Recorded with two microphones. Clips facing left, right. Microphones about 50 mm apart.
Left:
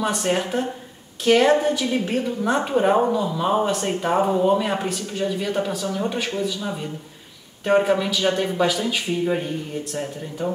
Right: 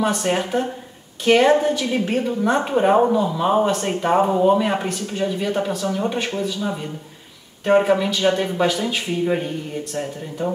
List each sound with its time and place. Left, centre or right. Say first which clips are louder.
0.0 s speech: right 2 dB; centre